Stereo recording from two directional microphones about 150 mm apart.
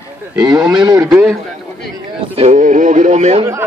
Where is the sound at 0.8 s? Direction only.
20° right (ahead or behind).